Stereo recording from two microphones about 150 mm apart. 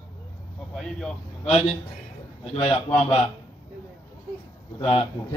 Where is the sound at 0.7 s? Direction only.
5° left (ahead or behind).